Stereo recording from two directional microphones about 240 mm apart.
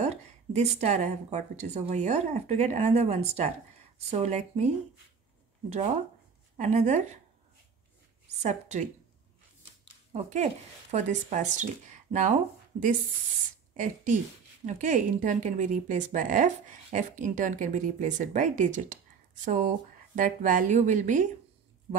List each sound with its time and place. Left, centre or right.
0.0 s a woman's voice: right
6.5 s a woman's voice: right
8.4 s a woman's voice: right
10.1 s speech: right
13.7 s speech: right